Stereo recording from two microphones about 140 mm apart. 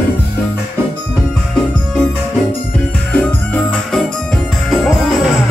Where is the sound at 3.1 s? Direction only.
5° left (ahead or behind).